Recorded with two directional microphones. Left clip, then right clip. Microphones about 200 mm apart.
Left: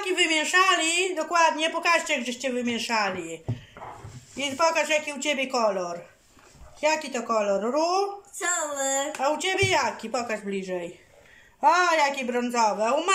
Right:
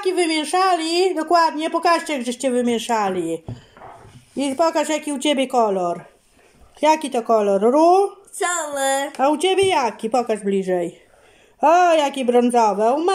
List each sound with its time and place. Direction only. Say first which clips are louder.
0.0 s speech: right 3 dB; 25° right (ahead or behind)
4.4 s a woman's voice: right 5 dB; 35° right (ahead or behind)